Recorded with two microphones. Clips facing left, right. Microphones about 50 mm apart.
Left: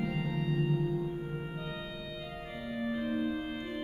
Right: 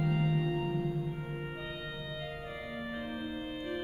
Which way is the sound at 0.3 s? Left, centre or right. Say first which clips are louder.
Right 2 dB; centre.